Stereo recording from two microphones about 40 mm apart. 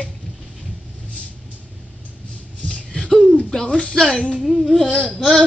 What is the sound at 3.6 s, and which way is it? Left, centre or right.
Speech, left.